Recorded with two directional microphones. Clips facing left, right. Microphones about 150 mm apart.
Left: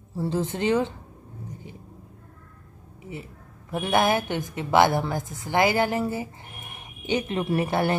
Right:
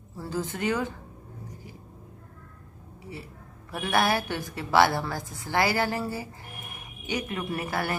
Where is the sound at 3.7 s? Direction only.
20° left (ahead or behind).